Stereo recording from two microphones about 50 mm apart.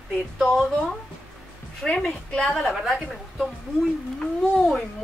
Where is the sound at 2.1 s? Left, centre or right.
Centre.